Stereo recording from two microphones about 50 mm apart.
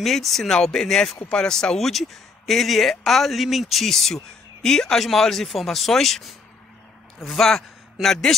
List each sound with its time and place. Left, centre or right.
0.0 s a man's voice: centre